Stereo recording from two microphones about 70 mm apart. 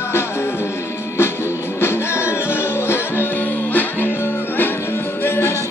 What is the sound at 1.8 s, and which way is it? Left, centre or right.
Music, left.